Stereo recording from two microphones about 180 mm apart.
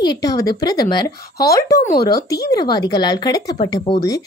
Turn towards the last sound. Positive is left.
turn(degrees=25)  # may be behind; listen again after turning